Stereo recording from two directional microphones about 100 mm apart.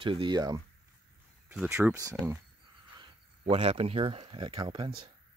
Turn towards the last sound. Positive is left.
turn(degrees=-55)  # may be behind; listen again after turning